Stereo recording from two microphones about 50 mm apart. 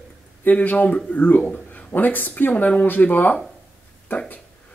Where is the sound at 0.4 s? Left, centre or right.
Left.